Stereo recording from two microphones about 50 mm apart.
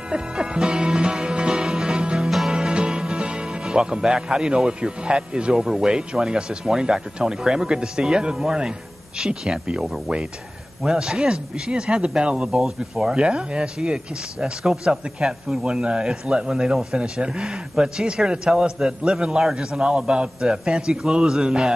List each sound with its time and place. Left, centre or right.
0.1 s music: centre
2.2 s music: centre
2.5 s music: centre
5.8 s speech: centre
13.1 s speech: right